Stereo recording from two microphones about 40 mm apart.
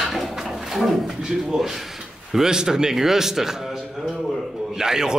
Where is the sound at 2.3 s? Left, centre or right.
Centre.